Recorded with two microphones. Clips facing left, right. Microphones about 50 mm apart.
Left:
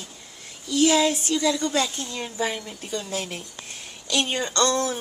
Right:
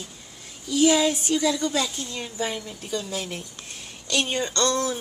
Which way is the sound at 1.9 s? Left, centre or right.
Left.